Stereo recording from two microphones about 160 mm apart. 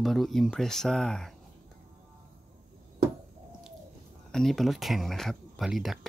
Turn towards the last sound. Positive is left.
turn(degrees=0)  # may be behind; listen again after turning